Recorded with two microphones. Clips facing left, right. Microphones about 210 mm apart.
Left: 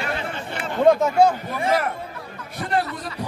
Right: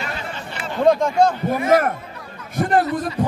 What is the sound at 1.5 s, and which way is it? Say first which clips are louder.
Speech: right 5 dB; 50° right (ahead or behind).